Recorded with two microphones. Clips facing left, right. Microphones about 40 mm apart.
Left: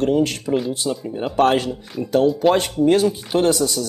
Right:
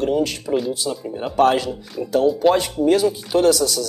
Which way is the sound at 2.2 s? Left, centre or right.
Centre.